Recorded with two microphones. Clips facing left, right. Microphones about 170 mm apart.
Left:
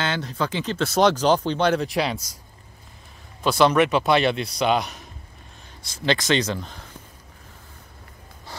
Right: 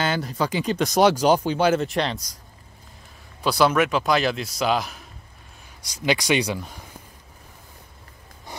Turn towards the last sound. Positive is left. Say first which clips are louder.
# even
turn(degrees=-10)  # may be behind; listen again after turning